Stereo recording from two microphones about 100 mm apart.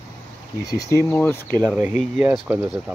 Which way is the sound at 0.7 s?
30° left (ahead or behind).